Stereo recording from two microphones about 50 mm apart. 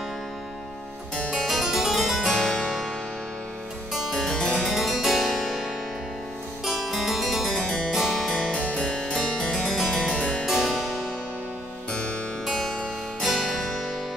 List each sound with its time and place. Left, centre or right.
1.4 s harpsichord: centre
2.3 s harpsichord: centre
4.1 s music: centre
4.6 s harpsichord: centre
7.4 s music: centre
7.9 s music: centre
8.5 s music: centre
11.9 s music: left
12.4 s music: centre